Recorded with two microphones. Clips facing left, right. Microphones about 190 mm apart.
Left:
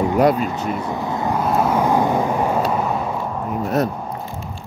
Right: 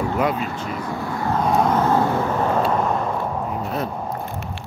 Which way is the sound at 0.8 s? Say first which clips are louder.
Left 2 dB; 20° left (ahead or behind).